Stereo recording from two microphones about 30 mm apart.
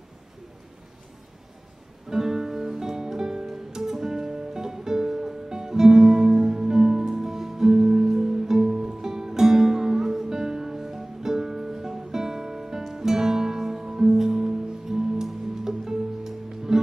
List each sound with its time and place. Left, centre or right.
2.0 s music: centre